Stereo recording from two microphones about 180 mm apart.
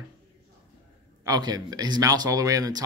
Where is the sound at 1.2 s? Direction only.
20° right (ahead or behind).